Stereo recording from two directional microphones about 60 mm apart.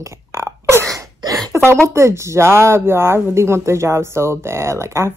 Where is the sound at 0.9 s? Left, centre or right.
Right.